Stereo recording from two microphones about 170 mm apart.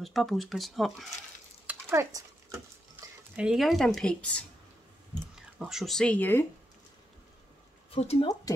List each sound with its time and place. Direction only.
0.0 s speech: centre (ahead or behind)
1.7 s a sound: 15° right (ahead or behind)
3.3 s speech: centre (ahead or behind)
7.9 s speech: 35° left (ahead or behind)